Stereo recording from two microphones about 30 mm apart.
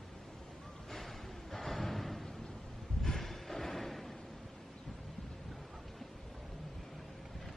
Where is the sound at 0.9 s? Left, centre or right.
Centre.